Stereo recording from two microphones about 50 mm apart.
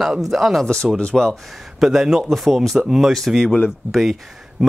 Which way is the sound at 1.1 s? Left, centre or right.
Centre.